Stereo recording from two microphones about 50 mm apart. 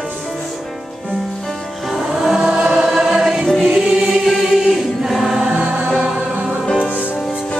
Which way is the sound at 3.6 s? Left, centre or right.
Centre.